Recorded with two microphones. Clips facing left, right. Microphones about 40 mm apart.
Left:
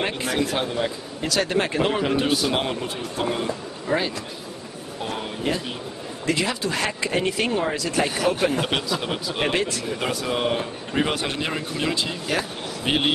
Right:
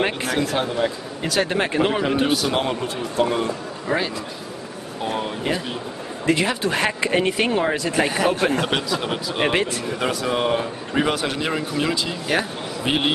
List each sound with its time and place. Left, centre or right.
0.2 s a man's voice: centre
1.2 s a man's voice: centre
3.9 s speech: centre
6.2 s speech: right
8.4 s a man's voice: centre
9.1 s speech: centre
9.5 s speech: right
9.9 s a man's voice: centre
11.1 s a man's voice: centre
11.4 s a man's voice: centre